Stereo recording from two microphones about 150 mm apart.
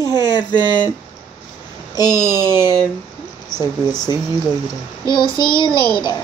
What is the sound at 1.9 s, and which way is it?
Speech, 25° left (ahead or behind).